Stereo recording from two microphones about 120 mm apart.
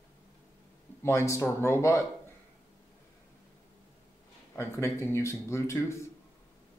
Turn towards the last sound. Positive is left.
turn(degrees=25)  # may be behind; listen again after turning